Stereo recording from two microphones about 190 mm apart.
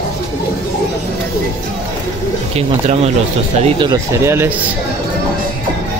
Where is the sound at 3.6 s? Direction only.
20° right (ahead or behind).